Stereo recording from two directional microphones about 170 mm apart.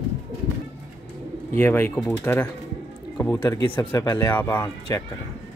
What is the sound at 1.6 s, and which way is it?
Speech, 10° left (ahead or behind).